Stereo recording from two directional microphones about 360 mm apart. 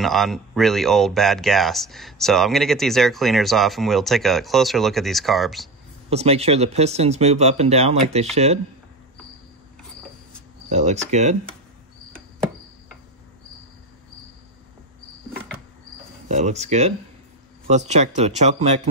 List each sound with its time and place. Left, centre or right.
0.0 s speech: centre
6.0 s speech: centre
10.7 s speech: centre
16.3 s speech: centre